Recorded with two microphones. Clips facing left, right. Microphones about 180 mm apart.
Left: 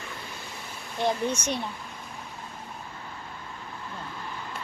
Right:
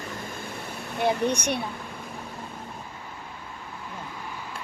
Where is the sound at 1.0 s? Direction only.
15° right (ahead or behind).